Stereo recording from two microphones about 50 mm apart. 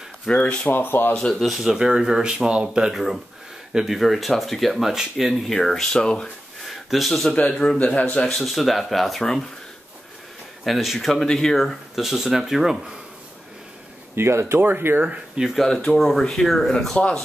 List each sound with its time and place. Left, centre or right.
0.3 s a man's voice: centre
0.7 s speech: left
1.4 s speech: centre
6.6 s a sound: centre
7.5 s a man's voice: centre
8.3 s speech: centre
9.2 s speech: centre
10.6 s speech: centre
11.9 s speech: centre
14.1 s speech: right
14.6 s speech: right
15.5 s speech: centre